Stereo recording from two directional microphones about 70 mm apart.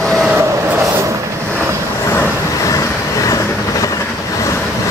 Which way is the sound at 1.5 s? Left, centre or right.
Right.